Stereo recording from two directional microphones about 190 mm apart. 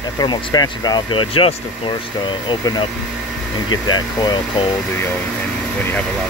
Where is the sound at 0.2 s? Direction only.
20° left (ahead or behind).